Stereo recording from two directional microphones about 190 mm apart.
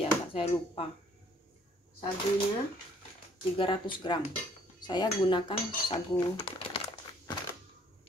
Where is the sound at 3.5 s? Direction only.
25° left (ahead or behind).